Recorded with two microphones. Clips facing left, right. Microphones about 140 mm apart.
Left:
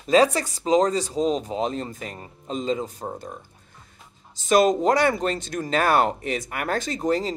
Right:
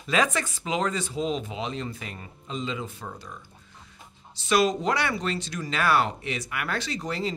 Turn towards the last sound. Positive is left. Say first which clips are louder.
# left 6 dB
turn(degrees=45)  # may be behind; listen again after turning